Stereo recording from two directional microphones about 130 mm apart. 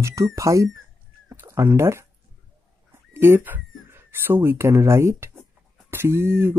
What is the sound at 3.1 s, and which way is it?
Speech, 15° right (ahead or behind).